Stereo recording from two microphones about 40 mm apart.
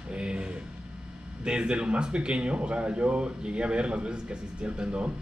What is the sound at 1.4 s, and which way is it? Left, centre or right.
Speech, right.